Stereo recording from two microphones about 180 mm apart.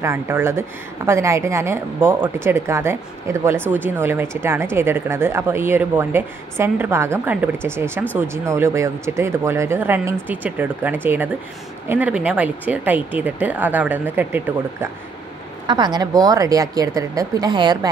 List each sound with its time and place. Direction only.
0.0 s speech: 15° right (ahead or behind)
15.6 s a woman's voice: 25° right (ahead or behind)